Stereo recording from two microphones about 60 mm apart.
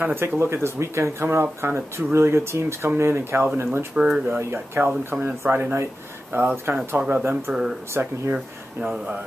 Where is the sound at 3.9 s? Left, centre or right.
Centre.